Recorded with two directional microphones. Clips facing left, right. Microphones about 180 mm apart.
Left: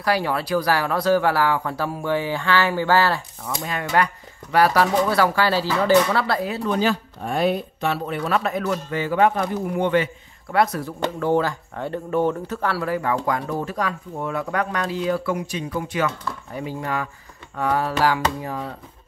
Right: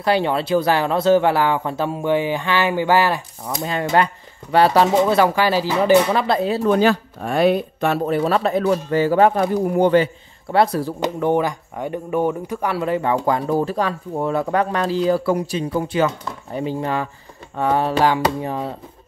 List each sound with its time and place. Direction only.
0.0 s speech: 25° right (ahead or behind)
3.6 s speech: 30° right (ahead or behind)
6.6 s speech: 55° right (ahead or behind); by 7.9 s 75° right (ahead or behind)
7.9 s speech: 40° right (ahead or behind)
11.0 s speech: 15° right (ahead or behind)